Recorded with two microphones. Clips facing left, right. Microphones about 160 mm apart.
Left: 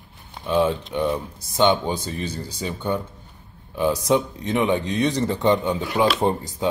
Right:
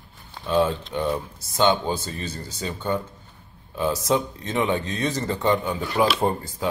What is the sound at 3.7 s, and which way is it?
A man's voice, 15° left (ahead or behind).